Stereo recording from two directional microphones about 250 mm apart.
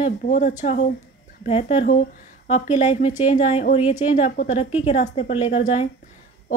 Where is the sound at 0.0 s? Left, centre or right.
Left.